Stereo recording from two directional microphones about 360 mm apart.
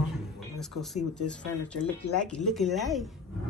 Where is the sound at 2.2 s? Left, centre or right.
Centre.